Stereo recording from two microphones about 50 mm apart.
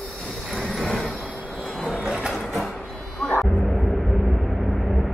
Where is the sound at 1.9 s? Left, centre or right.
Centre.